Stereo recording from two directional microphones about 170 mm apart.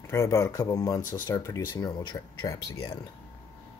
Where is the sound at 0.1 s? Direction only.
15° left (ahead or behind).